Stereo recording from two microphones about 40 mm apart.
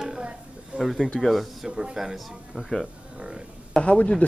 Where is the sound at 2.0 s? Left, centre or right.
Centre.